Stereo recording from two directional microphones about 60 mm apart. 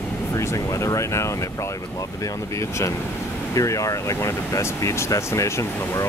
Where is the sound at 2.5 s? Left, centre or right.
Left.